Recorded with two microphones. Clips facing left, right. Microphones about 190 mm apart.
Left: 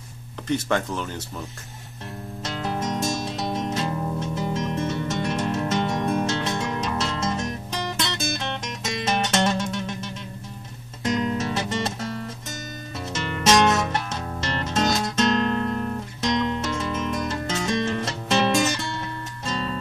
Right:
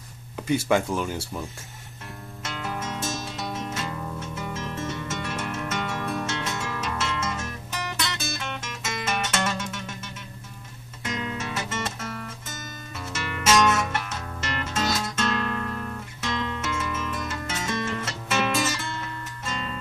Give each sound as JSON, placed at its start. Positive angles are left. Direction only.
{"t": 0.5, "sound": "speech", "side_deg": -10}
{"t": 2.4, "sound": "music", "side_deg": 35}
{"t": 8.6, "sound": "music", "side_deg": 35}
{"t": 13.3, "sound": "music", "side_deg": 35}
{"t": 19.4, "sound": "music", "side_deg": 35}